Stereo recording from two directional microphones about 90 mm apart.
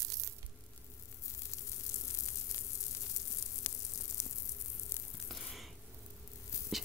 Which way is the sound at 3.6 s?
40° left (ahead or behind).